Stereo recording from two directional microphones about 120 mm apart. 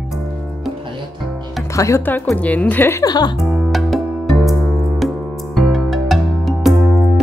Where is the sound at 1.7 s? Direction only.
25° left (ahead or behind).